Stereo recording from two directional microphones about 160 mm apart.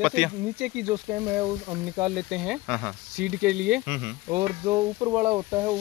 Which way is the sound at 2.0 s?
5° right (ahead or behind).